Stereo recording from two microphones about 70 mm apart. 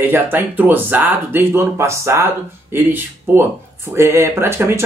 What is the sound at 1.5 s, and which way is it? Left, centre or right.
Speech, right.